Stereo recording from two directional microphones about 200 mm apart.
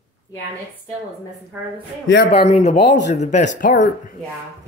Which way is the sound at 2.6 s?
35° left (ahead or behind).